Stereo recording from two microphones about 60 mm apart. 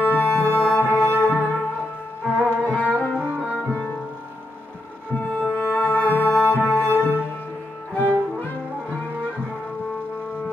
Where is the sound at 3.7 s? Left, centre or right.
Centre.